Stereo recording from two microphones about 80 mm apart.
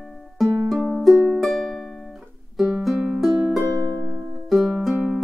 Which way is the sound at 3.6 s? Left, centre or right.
Left.